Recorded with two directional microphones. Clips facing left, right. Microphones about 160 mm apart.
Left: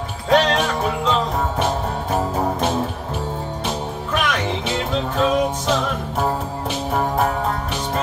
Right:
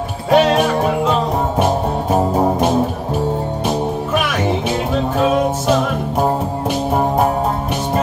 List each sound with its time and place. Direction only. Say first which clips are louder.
0.3 s music: right 4 dB; 10° right (ahead or behind)
6.9 s music: right 4 dB; 20° right (ahead or behind)